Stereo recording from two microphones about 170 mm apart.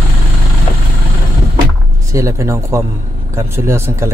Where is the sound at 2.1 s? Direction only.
15° right (ahead or behind).